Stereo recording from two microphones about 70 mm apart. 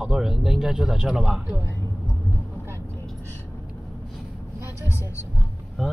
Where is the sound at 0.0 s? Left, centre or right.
Centre.